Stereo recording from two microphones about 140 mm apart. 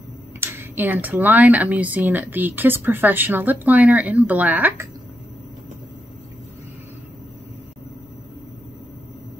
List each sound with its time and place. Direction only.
0.4 s speech: 15° right (ahead or behind)